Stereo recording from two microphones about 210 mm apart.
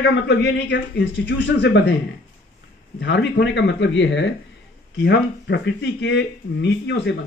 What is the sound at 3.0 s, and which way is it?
A man's voice, 55° left (ahead or behind).